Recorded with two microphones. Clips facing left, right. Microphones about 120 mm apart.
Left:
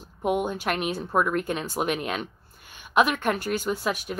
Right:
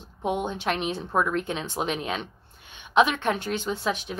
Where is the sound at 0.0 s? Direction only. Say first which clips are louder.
Left 2 dB; 10° left (ahead or behind).